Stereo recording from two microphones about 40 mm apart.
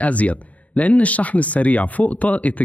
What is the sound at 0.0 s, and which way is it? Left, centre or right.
Speech, left.